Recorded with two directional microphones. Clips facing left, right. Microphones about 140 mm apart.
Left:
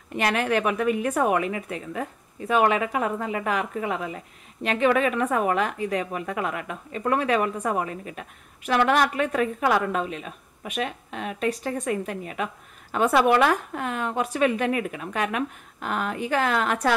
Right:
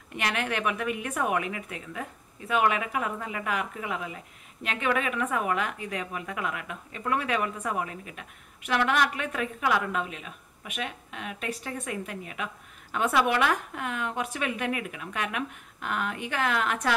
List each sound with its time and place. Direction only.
0.1 s a woman's voice: 40° left (ahead or behind)